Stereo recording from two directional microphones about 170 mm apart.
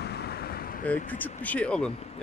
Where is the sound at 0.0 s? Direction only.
70° left (ahead or behind).